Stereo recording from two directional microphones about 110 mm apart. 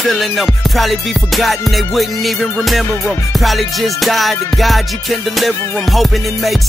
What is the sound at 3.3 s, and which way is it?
Music, centre (ahead or behind).